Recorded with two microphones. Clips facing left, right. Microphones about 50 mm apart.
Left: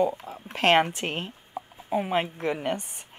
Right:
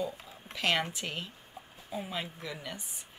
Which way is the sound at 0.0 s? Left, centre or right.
Left.